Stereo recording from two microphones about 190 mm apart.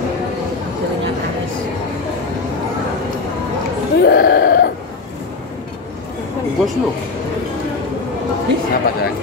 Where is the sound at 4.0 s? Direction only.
55° left (ahead or behind).